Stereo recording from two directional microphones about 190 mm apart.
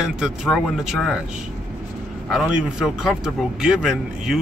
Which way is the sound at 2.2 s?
Centre (ahead or behind).